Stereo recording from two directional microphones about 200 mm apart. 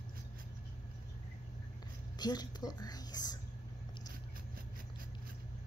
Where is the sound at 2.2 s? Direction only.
20° left (ahead or behind).